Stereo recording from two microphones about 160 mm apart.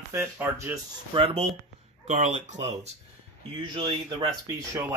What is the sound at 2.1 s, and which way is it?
Speech, 45° right (ahead or behind).